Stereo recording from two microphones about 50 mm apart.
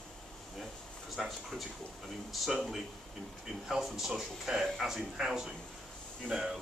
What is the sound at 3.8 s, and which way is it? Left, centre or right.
Speech, centre.